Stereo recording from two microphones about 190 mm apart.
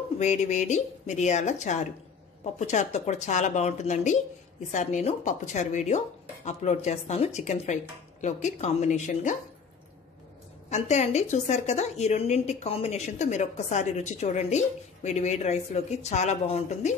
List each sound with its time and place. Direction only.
0.2 s speech: 40° left (ahead or behind)
10.7 s speech: 35° left (ahead or behind)